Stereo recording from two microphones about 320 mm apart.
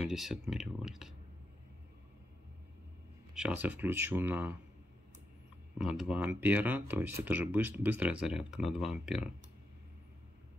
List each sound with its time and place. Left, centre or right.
0.0 s speech: centre
3.3 s speech: centre
5.8 s speech: centre